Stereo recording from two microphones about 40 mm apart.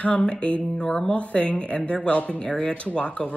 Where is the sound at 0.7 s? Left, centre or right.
Centre.